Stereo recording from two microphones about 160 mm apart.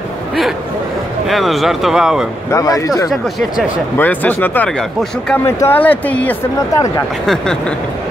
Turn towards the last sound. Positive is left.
turn(degrees=5)  # may be behind; listen again after turning